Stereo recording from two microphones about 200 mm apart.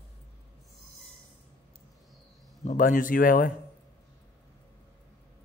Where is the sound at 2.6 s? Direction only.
40° left (ahead or behind).